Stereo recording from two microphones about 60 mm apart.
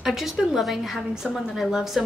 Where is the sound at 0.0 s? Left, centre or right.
Centre.